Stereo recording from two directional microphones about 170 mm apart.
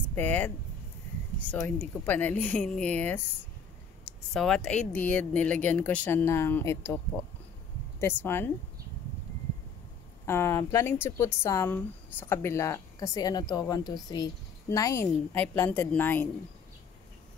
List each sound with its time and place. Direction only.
0.1 s speech: 10° left (ahead or behind)
4.3 s speech: 5° left (ahead or behind)
8.0 s speech: 15° left (ahead or behind)
10.2 s speech: 15° left (ahead or behind)